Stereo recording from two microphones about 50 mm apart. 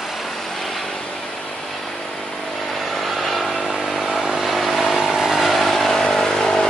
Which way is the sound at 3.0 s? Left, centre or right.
Centre.